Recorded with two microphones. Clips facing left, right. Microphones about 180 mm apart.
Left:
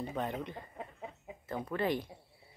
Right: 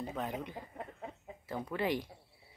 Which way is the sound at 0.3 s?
10° right (ahead or behind).